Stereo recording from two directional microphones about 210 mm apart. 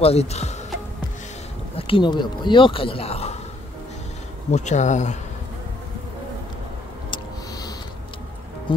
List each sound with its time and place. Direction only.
0.0 s speech: 30° left (ahead or behind)
1.9 s speech: 20° left (ahead or behind)
4.5 s speech: 35° left (ahead or behind)